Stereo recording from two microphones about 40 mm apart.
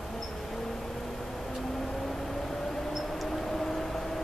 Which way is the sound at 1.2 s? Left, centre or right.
Centre.